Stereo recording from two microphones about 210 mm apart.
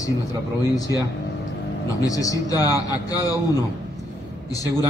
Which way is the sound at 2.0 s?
15° left (ahead or behind).